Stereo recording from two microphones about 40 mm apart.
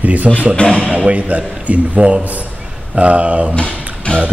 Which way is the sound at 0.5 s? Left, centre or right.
Left.